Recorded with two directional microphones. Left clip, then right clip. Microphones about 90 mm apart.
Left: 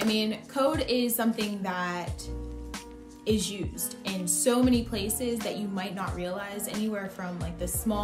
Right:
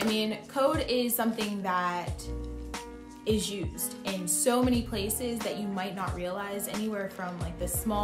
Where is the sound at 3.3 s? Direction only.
25° right (ahead or behind).